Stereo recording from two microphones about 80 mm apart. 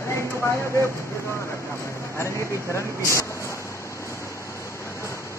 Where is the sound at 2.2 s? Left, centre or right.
Left.